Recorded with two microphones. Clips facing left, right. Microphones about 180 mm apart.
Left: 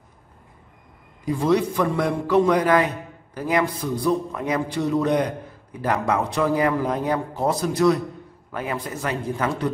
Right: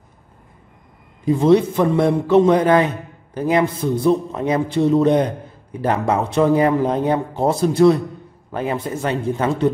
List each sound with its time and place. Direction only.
1.2 s a man's voice: 25° right (ahead or behind)